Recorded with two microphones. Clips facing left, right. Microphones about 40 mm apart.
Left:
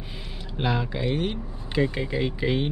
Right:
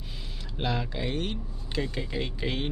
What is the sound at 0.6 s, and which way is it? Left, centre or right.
Speech, centre.